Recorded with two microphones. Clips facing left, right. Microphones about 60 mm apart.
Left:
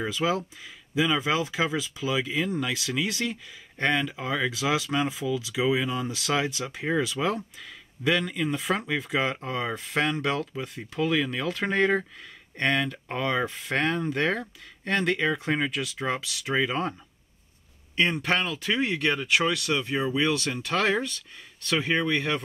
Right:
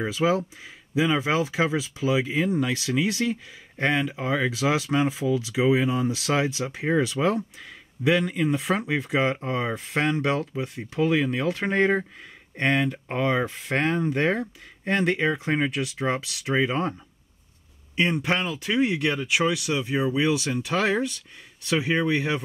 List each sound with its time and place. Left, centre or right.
0.0 s speech: right
14.0 s speech: centre
17.9 s speech: centre